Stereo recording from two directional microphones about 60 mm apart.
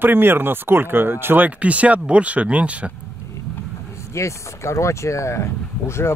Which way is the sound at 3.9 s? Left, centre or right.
Left.